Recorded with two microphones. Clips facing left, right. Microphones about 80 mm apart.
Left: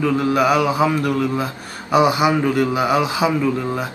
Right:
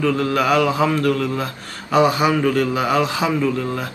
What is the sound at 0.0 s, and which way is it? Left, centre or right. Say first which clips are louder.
Speech: left 2 dB; centre.